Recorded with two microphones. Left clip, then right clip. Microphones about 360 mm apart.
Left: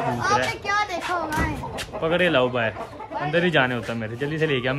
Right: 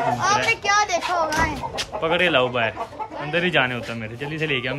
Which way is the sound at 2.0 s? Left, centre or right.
Centre.